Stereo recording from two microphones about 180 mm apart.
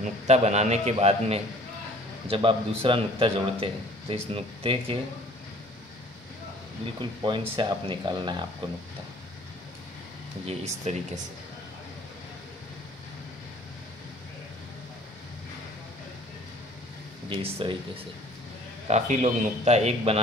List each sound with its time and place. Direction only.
0.0 s a man's voice: 40° right (ahead or behind)
7.0 s speech: 30° right (ahead or behind)
10.4 s a man's voice: 35° right (ahead or behind)
17.3 s a man's voice: 30° right (ahead or behind)
18.9 s a man's voice: 40° right (ahead or behind)